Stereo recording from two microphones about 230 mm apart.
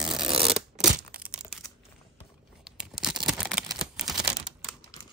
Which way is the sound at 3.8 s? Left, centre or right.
Centre.